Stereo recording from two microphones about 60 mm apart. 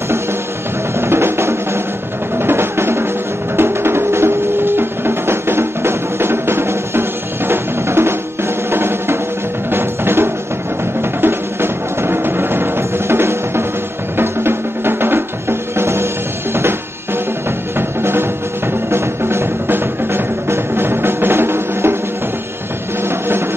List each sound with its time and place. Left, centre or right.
1.0 s music: right
17.7 s music: right